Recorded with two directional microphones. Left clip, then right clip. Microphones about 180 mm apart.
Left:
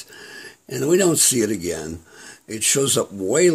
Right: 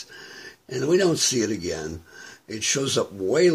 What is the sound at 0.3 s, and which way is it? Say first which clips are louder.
Speech: left 2 dB; 45° left (ahead or behind).